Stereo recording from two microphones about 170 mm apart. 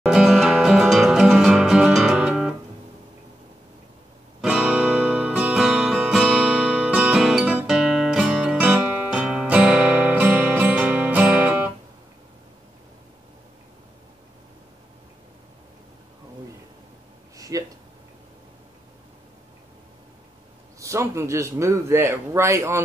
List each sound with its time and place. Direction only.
0.0 s music: centre (ahead or behind)
4.4 s music: 5° right (ahead or behind)
17.4 s a sound: 20° right (ahead or behind)
20.8 s speech: 15° right (ahead or behind)